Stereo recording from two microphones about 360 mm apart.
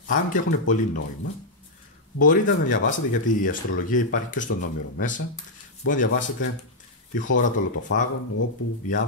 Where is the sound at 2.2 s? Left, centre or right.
Left.